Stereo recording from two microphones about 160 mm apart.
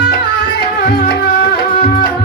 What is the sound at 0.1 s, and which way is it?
Music, 90° left.